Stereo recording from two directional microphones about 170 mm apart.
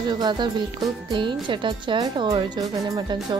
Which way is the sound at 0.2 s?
25° right (ahead or behind).